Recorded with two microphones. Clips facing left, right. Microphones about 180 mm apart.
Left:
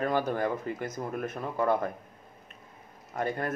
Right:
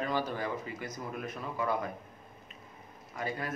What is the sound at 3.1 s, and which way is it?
Speech, 55° left (ahead or behind).